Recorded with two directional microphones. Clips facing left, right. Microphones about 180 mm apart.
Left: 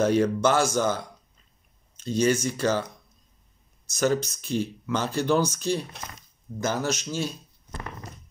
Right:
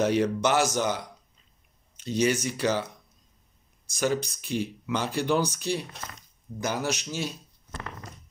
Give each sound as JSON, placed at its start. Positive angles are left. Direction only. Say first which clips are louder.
{"t": 0.0, "sound": "speech", "louder": "left 2 dB", "side_deg": -15}
{"t": 3.9, "sound": "speech", "louder": "left 3 dB", "side_deg": -15}